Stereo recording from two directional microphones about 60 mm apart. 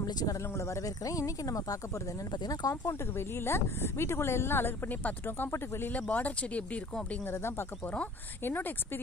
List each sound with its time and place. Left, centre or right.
0.0 s speech: left
0.6 s speech: left
2.4 s speech: left
2.7 s speech: left
7.2 s speech: left
7.8 s speech: left
8.5 s speech: left